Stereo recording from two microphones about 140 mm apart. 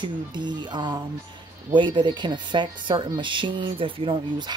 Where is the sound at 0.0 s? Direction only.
30° right (ahead or behind).